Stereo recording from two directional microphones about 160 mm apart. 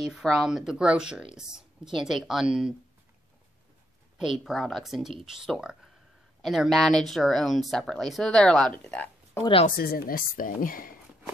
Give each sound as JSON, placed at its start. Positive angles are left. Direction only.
{"t": 0.1, "sound": "speech", "side_deg": 0}
{"t": 4.2, "sound": "speech", "side_deg": 0}
{"t": 9.4, "sound": "a woman's voice", "side_deg": 35}
{"t": 9.7, "sound": "a woman's voice", "side_deg": 70}